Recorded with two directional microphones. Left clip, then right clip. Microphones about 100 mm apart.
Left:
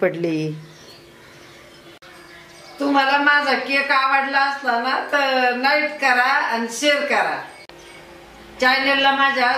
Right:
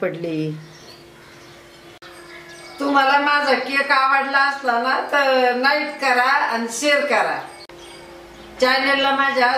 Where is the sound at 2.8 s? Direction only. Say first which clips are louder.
Right 1 dB; centre (ahead or behind).